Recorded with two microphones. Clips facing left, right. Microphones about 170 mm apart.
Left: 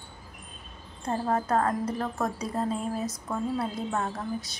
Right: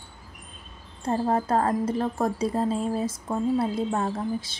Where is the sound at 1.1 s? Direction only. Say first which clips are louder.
Right 3 dB; 25° right (ahead or behind).